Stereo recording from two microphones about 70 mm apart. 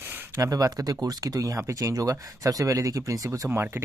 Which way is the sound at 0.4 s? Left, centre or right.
Right.